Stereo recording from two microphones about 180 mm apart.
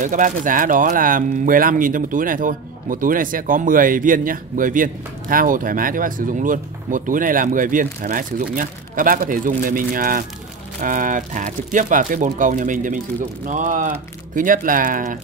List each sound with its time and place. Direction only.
0.0 s speech: 45° right (ahead or behind)